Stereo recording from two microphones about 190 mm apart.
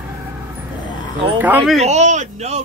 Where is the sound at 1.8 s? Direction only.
35° right (ahead or behind).